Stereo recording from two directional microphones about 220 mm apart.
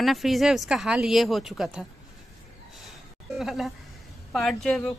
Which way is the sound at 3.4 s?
Centre (ahead or behind).